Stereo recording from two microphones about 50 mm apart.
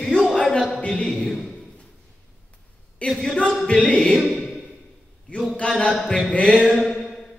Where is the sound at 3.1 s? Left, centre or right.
Centre.